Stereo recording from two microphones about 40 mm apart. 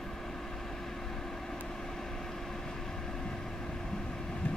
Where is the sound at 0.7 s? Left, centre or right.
Centre.